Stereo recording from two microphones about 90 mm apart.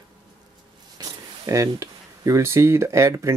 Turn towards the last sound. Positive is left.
turn(degrees=-35)  # may be behind; listen again after turning